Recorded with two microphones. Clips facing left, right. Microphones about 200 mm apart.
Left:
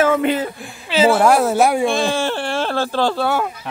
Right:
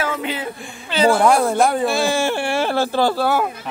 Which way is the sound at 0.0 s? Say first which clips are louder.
Left 8 dB; 50° left (ahead or behind).